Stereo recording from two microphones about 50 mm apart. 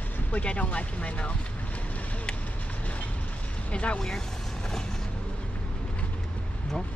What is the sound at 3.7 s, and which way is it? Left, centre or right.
Speech, left.